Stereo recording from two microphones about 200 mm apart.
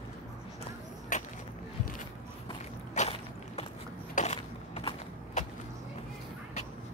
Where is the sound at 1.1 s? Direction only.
40° left (ahead or behind).